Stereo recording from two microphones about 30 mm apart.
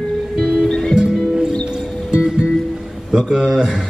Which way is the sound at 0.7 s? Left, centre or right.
Left.